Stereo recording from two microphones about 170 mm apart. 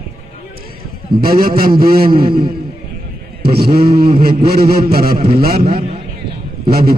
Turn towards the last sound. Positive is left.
turn(degrees=-65)  # may be behind; listen again after turning